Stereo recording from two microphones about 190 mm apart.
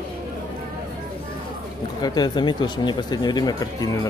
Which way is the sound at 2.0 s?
20° left (ahead or behind).